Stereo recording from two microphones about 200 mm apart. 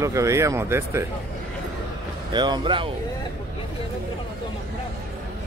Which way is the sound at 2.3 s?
20° right (ahead or behind).